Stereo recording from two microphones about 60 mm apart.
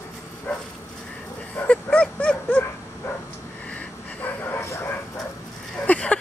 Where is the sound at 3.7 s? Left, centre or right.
Left.